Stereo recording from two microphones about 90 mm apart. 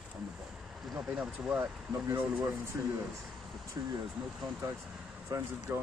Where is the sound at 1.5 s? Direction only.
20° right (ahead or behind); by 3.9 s 35° right (ahead or behind).